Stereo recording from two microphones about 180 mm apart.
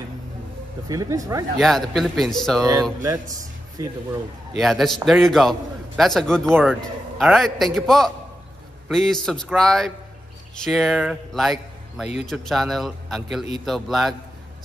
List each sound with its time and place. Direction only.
0.8 s speech: 20° right (ahead or behind)
1.6 s a man's voice: centre (ahead or behind)
3.0 s speech: 20° right (ahead or behind)
4.6 s a man's voice: centre (ahead or behind)
6.4 s speech: 10° right (ahead or behind)
6.7 s a man's voice: centre (ahead or behind)